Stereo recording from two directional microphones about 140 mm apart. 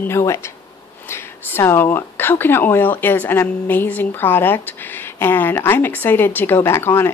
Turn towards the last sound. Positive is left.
turn(degrees=15)  # may be behind; listen again after turning